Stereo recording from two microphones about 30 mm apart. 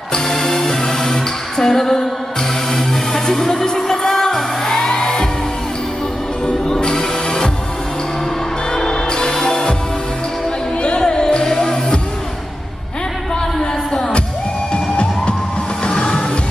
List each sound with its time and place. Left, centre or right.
0.1 s music: centre
8.7 s music: left
10.8 s music: left
11.5 s music: centre
13.6 s a sound: centre
14.7 s music: left